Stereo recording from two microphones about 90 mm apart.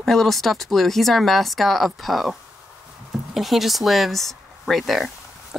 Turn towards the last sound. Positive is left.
turn(degrees=0)  # may be behind; listen again after turning